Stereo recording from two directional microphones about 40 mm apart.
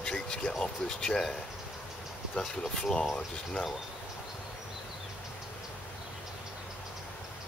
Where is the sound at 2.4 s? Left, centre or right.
Centre.